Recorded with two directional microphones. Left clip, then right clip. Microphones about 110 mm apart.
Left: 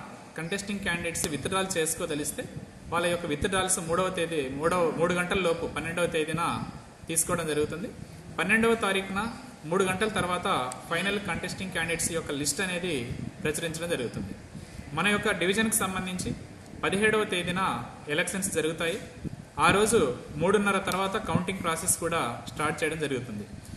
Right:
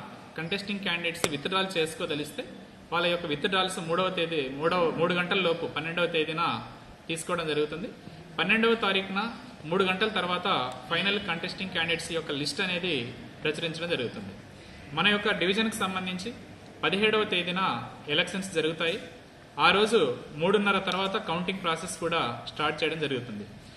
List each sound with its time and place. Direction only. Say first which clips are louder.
0.4 s a man's voice: right 1 dB; 25° left (ahead or behind)